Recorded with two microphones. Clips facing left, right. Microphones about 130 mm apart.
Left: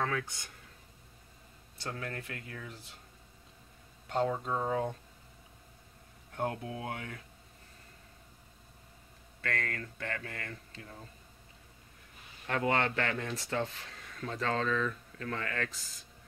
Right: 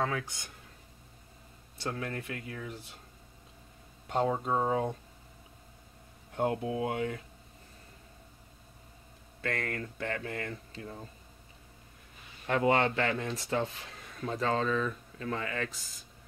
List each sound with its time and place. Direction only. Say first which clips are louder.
0.0 s speech: right 1 dB; 15° right (ahead or behind)
1.8 s speech: right 4 dB; 20° right (ahead or behind)
4.3 s speech: right 4 dB; 25° right (ahead or behind)
6.3 s speech: right 5 dB; 20° right (ahead or behind)
9.4 s speech: right 2 dB; 20° right (ahead or behind)
12.4 s speech: right 4 dB; 20° right (ahead or behind)